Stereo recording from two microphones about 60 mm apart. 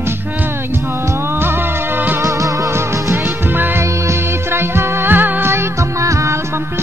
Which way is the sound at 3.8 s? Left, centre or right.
Right.